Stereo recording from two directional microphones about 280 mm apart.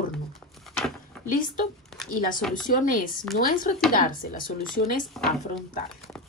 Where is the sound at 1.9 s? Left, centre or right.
Centre.